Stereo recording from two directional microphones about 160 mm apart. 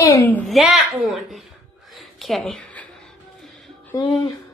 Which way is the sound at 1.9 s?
Centre (ahead or behind).